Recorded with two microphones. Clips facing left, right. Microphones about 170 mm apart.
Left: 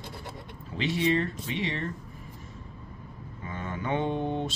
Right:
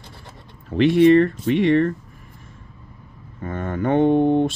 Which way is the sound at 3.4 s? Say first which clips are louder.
Right 11 dB; 50° right (ahead or behind).